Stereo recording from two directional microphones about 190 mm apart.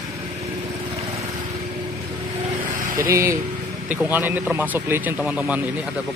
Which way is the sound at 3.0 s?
15° right (ahead or behind).